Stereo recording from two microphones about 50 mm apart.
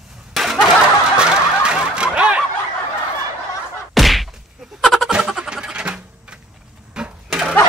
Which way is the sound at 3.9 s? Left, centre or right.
Centre.